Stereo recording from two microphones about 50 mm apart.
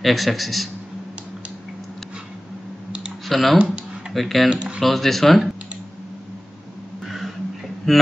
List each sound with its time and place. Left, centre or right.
0.0 s a man's voice: centre
3.3 s a man's voice: centre
4.5 s speech: centre
4.8 s a man's voice: centre
7.8 s speech: centre